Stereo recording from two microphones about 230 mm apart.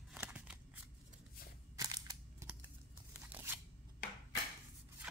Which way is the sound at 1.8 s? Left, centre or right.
Centre.